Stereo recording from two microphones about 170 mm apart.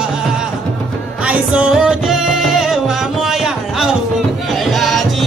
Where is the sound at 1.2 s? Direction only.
5° right (ahead or behind).